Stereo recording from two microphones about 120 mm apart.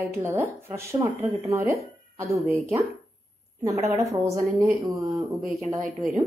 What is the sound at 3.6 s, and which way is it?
Speech, 25° right (ahead or behind).